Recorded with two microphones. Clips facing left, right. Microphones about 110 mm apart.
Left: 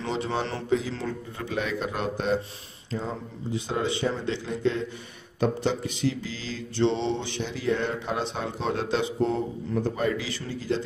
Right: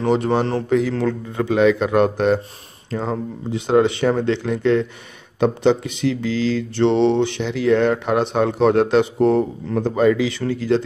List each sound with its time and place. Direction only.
0.0 s a man's voice: 55° right (ahead or behind)
0.7 s mantra: 60° right (ahead or behind)
5.4 s mantra: 80° right
10.7 s mantra: 70° right (ahead or behind)